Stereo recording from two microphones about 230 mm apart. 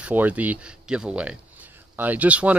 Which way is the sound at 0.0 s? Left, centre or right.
Centre.